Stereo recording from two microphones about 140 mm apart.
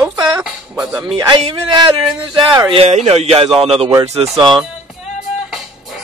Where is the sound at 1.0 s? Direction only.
30° right (ahead or behind).